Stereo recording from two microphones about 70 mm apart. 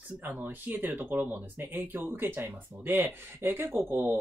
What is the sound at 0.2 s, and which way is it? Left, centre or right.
Speech, right.